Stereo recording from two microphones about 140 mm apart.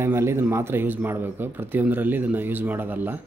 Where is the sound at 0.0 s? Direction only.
20° right (ahead or behind).